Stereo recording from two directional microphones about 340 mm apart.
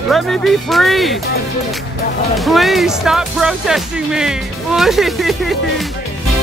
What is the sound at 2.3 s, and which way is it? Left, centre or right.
Speech, centre.